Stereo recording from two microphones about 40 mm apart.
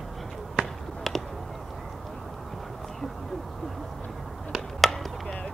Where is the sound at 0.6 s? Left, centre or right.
Right.